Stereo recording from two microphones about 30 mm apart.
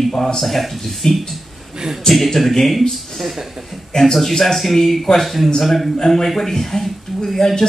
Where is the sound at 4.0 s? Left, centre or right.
Centre.